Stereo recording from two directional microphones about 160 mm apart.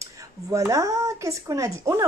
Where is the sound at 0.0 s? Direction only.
20° right (ahead or behind).